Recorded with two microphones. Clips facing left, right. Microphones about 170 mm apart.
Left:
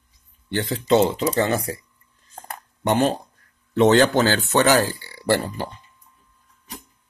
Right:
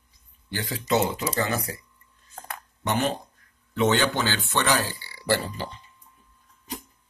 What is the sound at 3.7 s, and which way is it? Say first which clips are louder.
Speech: left 7 dB; 35° left (ahead or behind).